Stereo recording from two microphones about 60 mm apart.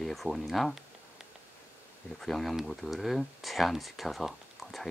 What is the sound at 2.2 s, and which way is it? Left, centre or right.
Speech, centre.